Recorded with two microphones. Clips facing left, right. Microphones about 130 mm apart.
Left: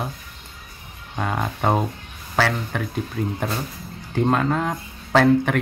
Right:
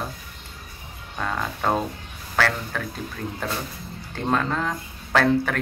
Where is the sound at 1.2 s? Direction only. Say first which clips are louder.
Left 3 dB; 20° left (ahead or behind).